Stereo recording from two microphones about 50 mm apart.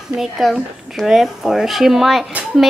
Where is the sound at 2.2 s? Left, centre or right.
Right.